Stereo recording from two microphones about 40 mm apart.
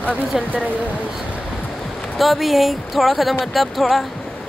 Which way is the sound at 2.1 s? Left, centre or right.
Centre.